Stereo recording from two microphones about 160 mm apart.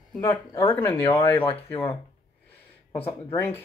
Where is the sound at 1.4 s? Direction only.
35° left (ahead or behind).